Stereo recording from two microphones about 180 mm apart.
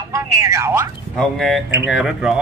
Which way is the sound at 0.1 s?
15° right (ahead or behind).